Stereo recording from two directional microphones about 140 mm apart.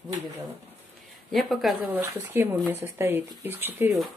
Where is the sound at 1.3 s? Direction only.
Centre (ahead or behind).